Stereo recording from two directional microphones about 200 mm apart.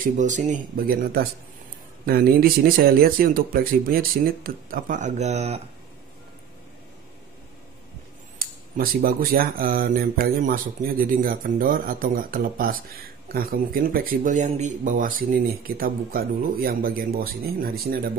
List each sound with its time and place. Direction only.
0.0 s speech: 40° right (ahead or behind)
8.4 s speech: 45° right (ahead or behind)